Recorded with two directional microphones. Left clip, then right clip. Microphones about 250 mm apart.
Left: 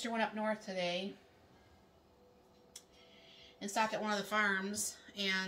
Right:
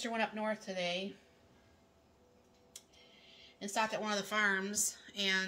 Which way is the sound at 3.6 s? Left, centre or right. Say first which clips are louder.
Even; right.